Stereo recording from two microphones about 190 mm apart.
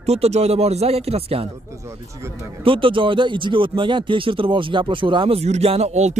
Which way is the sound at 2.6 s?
25° right (ahead or behind).